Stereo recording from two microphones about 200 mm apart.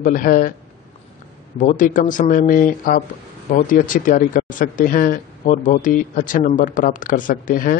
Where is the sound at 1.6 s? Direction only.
40° left (ahead or behind).